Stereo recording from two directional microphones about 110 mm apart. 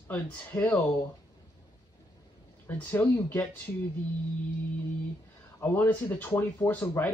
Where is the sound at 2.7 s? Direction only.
15° left (ahead or behind).